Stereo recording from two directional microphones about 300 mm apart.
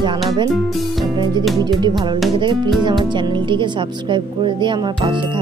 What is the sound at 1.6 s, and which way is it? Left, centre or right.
Speech, centre.